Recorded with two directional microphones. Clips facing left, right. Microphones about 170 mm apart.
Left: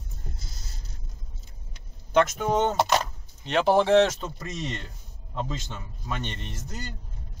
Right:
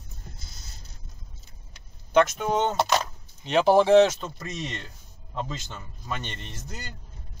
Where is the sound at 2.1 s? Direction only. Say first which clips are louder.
Right 1 dB; centre (ahead or behind).